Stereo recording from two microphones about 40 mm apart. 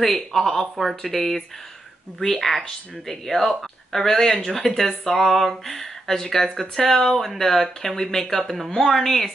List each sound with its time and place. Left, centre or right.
0.0 s speech: centre
4.6 s speech: centre